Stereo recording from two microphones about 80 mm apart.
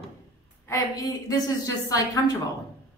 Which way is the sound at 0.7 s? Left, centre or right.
Left.